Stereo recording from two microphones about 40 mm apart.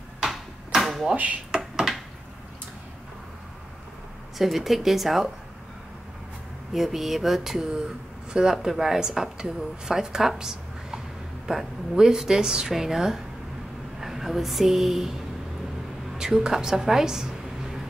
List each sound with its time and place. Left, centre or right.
0.7 s a sound: centre
1.1 s speech: right
4.4 s speech: centre
6.7 s speech: centre
8.3 s a woman's voice: centre
16.2 s a woman's voice: centre